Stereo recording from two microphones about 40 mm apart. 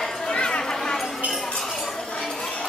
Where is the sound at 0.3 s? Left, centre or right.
Left.